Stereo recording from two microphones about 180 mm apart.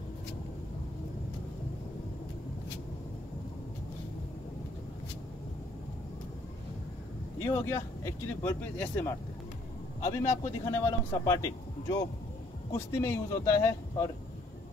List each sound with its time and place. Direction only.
7.4 s a man's voice: 15° left (ahead or behind)